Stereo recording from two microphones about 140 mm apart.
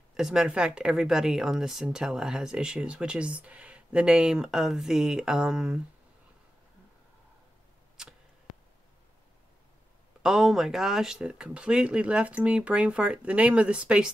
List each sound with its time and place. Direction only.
0.1 s speech: 5° right (ahead or behind)
8.0 s arrow: 5° right (ahead or behind)
10.2 s speech: 5° right (ahead or behind)